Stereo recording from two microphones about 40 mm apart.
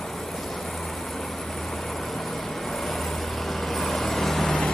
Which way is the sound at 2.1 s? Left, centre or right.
Centre.